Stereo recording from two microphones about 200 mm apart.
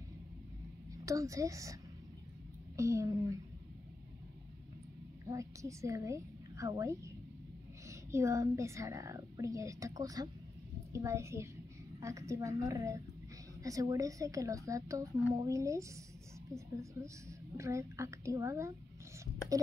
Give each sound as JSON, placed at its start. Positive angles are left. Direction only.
{"t": 1.0, "sound": "a woman's voice", "side_deg": -15}
{"t": 5.2, "sound": "a woman's voice", "side_deg": -15}